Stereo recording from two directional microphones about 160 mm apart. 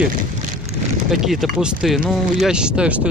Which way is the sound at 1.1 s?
Centre (ahead or behind).